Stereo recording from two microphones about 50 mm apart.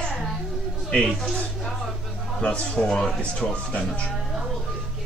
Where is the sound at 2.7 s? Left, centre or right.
Centre.